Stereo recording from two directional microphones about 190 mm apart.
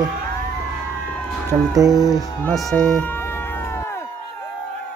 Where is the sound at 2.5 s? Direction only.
Centre (ahead or behind).